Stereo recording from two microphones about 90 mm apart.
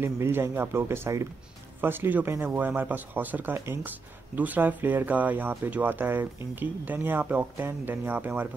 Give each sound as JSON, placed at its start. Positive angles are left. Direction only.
{"t": 0.0, "sound": "speech", "side_deg": -25}